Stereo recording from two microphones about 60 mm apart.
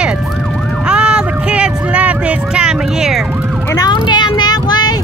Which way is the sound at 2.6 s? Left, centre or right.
Centre.